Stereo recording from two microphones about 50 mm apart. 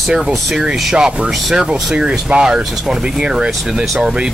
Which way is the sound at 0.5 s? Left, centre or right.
Centre.